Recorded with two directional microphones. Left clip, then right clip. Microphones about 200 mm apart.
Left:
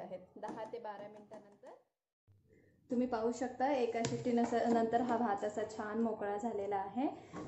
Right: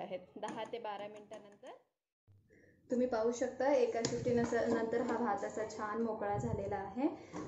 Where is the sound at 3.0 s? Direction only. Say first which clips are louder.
Right 2 dB; 35° left (ahead or behind).